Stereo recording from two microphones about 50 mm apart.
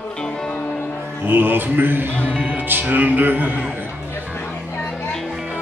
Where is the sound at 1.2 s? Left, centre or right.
Right.